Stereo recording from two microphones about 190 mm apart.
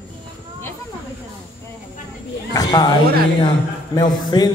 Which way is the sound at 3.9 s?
20° left (ahead or behind).